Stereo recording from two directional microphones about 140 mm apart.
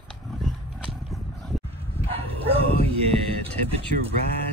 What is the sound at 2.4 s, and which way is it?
Bow-wow, 45° right (ahead or behind).